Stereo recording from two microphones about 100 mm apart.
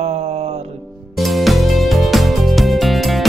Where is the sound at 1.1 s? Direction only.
Centre (ahead or behind).